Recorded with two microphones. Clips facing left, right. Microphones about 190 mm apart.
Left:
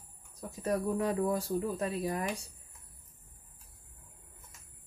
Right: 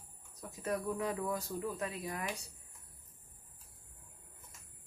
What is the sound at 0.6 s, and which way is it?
Speech, 35° left (ahead or behind).